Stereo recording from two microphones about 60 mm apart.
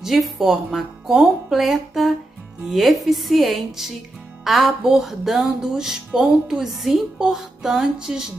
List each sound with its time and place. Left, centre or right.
0.0 s speech: centre
2.7 s music: centre
7.2 s speech: centre